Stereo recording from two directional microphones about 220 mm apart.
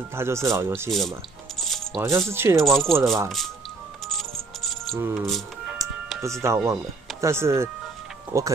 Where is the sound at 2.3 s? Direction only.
10° right (ahead or behind).